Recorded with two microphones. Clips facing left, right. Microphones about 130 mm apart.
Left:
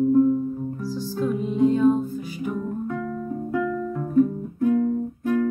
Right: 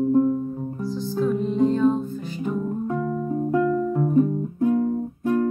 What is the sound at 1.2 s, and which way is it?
Music, 5° left (ahead or behind).